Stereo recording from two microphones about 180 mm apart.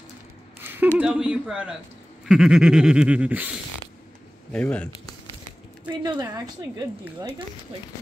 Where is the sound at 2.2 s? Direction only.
5° right (ahead or behind).